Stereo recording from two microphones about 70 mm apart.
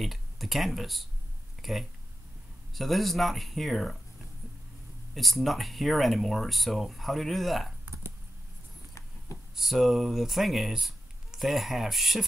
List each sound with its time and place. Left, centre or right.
0.0 s speech: centre
5.1 s speech: centre
9.6 s speech: centre